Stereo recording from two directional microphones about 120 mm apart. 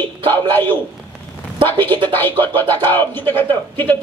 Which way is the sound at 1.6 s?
20° left (ahead or behind).